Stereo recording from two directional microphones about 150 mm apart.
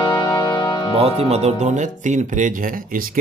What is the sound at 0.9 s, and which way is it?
Speech, 45° right (ahead or behind).